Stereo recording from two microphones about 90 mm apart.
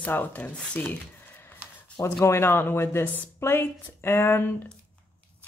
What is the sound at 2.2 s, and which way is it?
A woman's voice, 30° left (ahead or behind).